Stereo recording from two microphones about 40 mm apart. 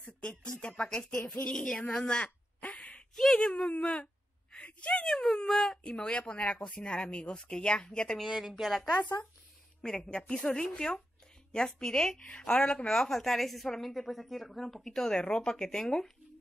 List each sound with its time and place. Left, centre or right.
0.2 s speech: left
2.7 s a sound: left
3.3 s speech: left
3.7 s a sound: left
4.7 s speech: left
5.0 s a woman's voice: centre
5.9 s speech: left
8.3 s speech: centre
9.8 s speech: left
13.2 s a woman's voice: centre